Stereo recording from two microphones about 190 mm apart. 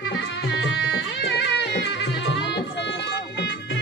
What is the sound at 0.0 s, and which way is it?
Tabla, 80° left.